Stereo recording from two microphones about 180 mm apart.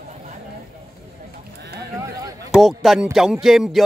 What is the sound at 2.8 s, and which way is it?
Music, centre (ahead or behind).